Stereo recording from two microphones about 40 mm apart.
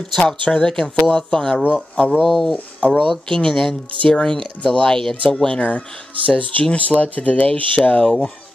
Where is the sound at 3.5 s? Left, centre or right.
Centre.